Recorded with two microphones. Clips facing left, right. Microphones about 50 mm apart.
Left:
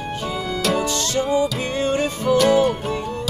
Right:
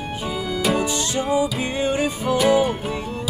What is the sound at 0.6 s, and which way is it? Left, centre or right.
Music, centre.